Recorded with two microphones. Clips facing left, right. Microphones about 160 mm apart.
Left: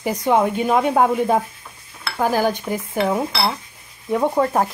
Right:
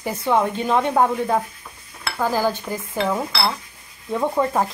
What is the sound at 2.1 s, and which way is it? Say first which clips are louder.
Dishes: left 2 dB; 15° left (ahead or behind).